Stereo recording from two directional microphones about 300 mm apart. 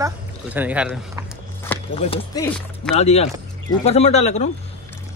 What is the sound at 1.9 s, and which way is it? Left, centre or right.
Speech, centre.